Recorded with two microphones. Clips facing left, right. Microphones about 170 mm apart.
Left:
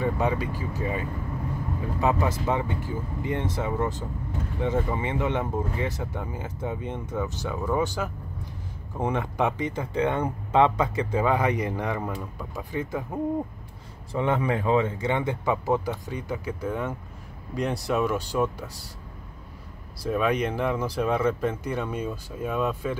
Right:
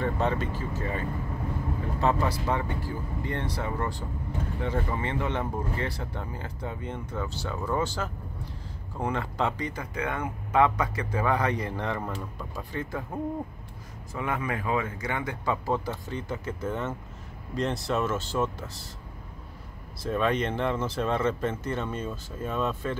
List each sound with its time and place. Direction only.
0.0 s speech: 10° left (ahead or behind)
14.1 s speech: 25° left (ahead or behind)
20.1 s speech: 10° left (ahead or behind)